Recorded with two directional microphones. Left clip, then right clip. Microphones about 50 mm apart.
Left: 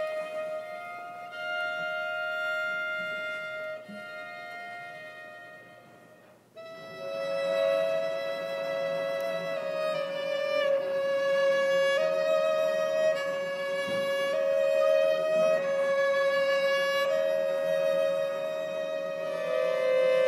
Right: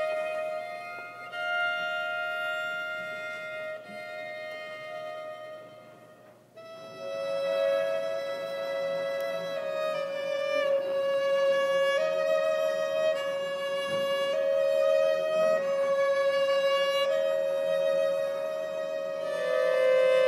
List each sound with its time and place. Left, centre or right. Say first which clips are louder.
1.4 s music: right 3 dB; right
7.1 s music: even; centre
19.3 s music: right 3 dB; right